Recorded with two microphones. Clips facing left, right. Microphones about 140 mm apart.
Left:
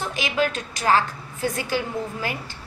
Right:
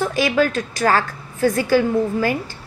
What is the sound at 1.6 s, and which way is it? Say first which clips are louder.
Speech: right 10 dB; 40° right (ahead or behind).